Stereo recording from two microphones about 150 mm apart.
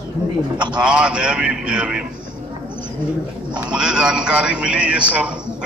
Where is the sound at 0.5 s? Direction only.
30° right (ahead or behind).